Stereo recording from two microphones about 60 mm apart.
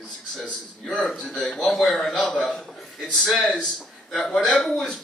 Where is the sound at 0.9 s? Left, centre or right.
Centre.